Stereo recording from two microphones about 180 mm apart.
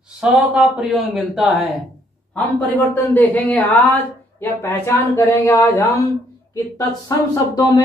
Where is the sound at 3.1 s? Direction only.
10° left (ahead or behind).